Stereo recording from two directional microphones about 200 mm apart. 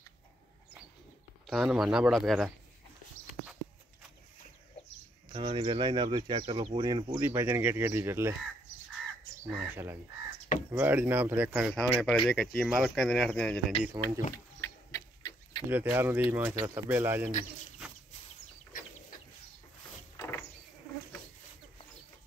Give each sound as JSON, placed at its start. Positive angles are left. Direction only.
{"t": 1.5, "sound": "speech", "side_deg": 0}
{"t": 5.3, "sound": "speech", "side_deg": -25}
{"t": 9.6, "sound": "speech", "side_deg": -10}
{"t": 13.8, "sound": "speech", "side_deg": -15}
{"t": 14.3, "sound": "a sound", "side_deg": 15}
{"t": 15.7, "sound": "speech", "side_deg": -10}
{"t": 20.2, "sound": "a sound", "side_deg": 15}